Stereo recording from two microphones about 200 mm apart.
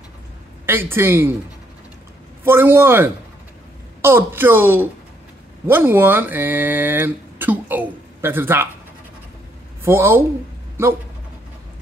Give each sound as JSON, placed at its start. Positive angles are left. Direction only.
{"t": 0.7, "sound": "speech", "side_deg": -10}
{"t": 2.4, "sound": "speech", "side_deg": -10}
{"t": 9.8, "sound": "speech", "side_deg": -10}